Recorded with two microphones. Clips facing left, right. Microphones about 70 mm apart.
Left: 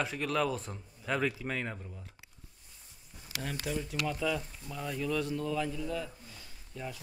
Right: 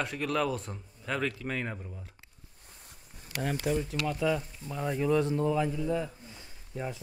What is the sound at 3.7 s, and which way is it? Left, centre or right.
Speech, centre.